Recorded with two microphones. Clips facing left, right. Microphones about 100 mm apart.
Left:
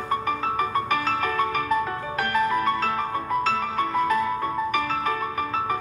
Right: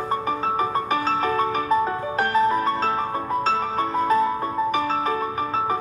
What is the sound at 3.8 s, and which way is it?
Music, 35° right (ahead or behind).